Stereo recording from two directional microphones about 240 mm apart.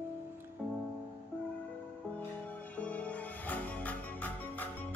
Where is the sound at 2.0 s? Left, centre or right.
Centre.